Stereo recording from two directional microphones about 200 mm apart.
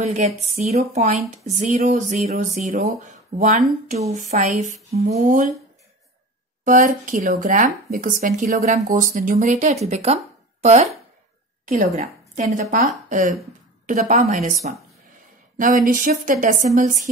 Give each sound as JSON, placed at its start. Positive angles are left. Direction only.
{"t": 0.0, "sound": "speech", "side_deg": -35}
{"t": 6.6, "sound": "a woman's voice", "side_deg": -40}